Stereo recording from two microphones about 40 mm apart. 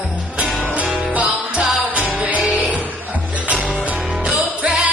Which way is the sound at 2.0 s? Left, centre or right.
Right.